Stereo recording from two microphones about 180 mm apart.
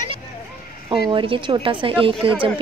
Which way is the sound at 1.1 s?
25° right (ahead or behind).